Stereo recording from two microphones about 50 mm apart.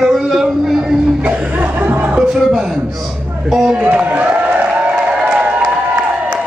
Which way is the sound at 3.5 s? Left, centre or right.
Centre.